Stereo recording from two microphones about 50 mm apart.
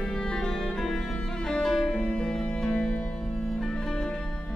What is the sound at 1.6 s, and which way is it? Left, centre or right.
Music, centre.